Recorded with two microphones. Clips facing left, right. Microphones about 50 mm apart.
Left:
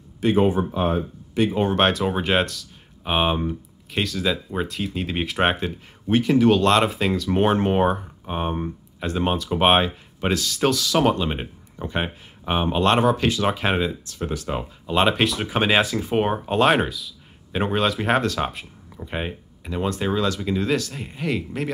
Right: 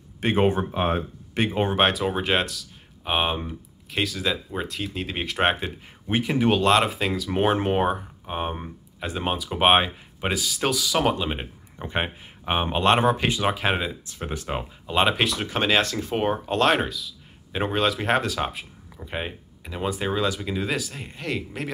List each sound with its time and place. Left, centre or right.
0.2 s speech: right
1.5 s speech: right
1.8 s speech: centre
6.0 s speech: centre
6.6 s speech: centre
11.8 s speech: centre
14.0 s speech: centre
14.6 s speech: centre